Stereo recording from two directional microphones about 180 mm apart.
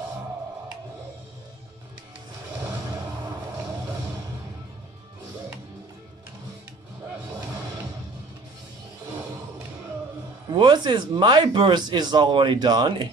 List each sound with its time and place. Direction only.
10.5 s speech: 25° right (ahead or behind)